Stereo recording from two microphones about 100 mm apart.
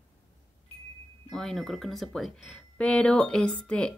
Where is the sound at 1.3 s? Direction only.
5° left (ahead or behind).